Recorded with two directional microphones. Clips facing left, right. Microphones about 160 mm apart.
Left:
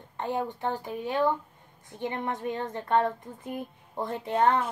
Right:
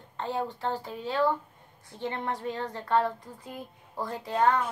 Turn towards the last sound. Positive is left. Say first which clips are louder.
# left 1 dB
turn(degrees=25)  # may be behind; listen again after turning